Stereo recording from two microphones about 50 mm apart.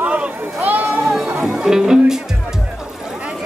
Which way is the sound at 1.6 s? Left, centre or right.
Centre.